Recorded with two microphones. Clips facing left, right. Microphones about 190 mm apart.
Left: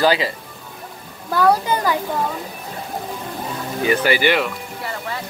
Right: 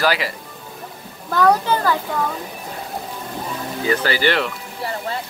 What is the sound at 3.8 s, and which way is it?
Speech, 15° left (ahead or behind).